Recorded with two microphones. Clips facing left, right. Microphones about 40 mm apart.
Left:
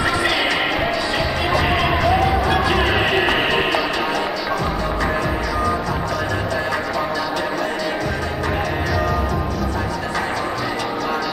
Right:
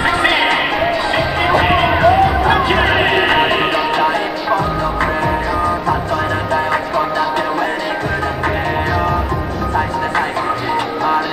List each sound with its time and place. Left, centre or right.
0.0 s music: right
1.5 s run: right
2.4 s music: right